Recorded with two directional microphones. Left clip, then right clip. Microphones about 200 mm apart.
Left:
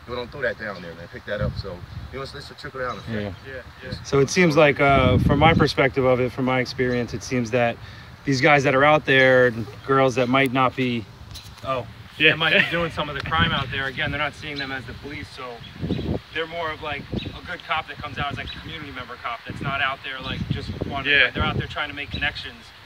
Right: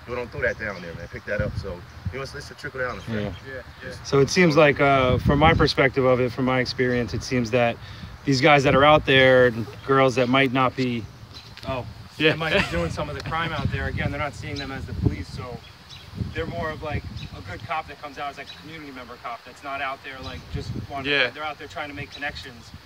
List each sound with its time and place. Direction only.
0.1 s speech: 15° right (ahead or behind)
10.8 s speech: 15° left (ahead or behind)
12.4 s speech: 10° right (ahead or behind)
16.3 s speech: 10° right (ahead or behind)
21.0 s speech: 20° right (ahead or behind)
21.4 s speech: 10° right (ahead or behind)